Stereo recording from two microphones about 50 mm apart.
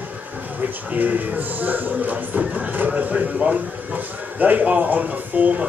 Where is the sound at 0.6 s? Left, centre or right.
Right.